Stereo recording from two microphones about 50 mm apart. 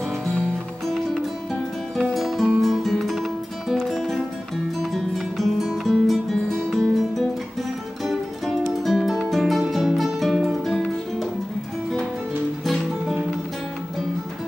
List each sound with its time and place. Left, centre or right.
0.2 s music: centre
13.0 s music: centre